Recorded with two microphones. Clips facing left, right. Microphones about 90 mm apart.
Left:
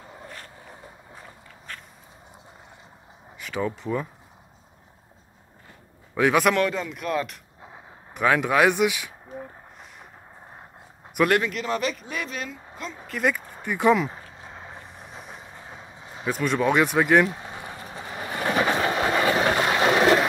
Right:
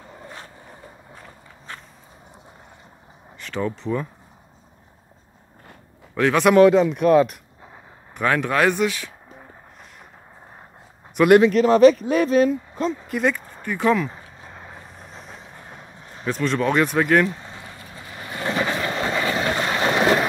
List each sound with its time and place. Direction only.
0.0 s vehicle: centre (ahead or behind)
3.3 s speech: 5° left (ahead or behind)
6.1 s a man's voice: 10° left (ahead or behind)
6.5 s speech: 25° right (ahead or behind)
7.6 s speech: 5° left (ahead or behind)
11.2 s speech: 20° right (ahead or behind)
11.5 s speech: 35° right (ahead or behind)
13.2 s speech: 5° left (ahead or behind)
13.6 s speech: 15° left (ahead or behind)
14.4 s vehicle: centre (ahead or behind)
14.8 s vehicle: 15° left (ahead or behind)